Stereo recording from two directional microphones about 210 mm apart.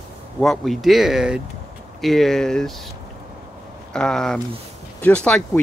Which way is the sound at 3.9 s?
5° left (ahead or behind).